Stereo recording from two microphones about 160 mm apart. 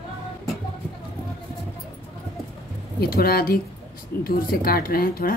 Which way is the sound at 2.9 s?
70° left (ahead or behind).